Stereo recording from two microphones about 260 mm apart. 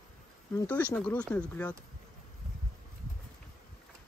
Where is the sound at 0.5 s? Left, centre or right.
Centre.